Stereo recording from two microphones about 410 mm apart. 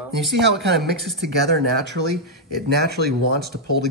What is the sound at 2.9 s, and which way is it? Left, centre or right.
Speech, right.